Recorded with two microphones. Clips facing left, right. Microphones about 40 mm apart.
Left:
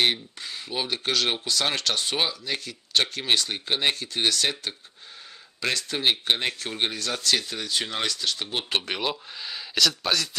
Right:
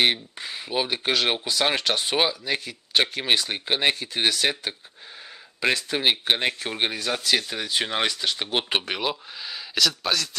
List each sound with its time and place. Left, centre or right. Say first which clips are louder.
0.0 s speech: right 2 dB; centre
8.7 s speech: right 1 dB; centre